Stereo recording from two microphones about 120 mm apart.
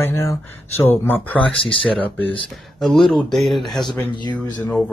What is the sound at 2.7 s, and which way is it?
Speech, centre (ahead or behind).